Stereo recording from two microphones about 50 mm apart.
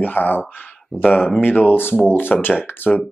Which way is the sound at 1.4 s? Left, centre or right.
Left.